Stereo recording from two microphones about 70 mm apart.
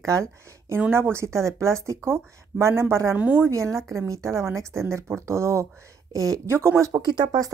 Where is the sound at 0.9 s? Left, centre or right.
Right.